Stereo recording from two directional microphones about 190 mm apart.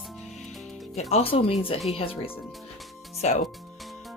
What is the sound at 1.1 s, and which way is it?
Speech, 30° left (ahead or behind).